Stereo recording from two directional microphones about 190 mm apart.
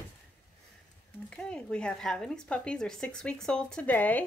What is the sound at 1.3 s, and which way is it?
Speech, 5° left (ahead or behind).